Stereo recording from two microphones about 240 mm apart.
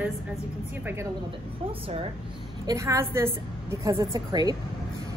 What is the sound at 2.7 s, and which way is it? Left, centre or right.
A woman's voice, centre.